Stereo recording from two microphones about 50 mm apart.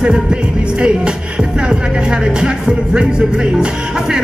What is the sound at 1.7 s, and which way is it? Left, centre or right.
Speech, centre.